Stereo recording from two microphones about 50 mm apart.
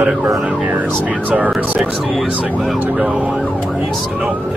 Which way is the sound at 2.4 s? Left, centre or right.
Right.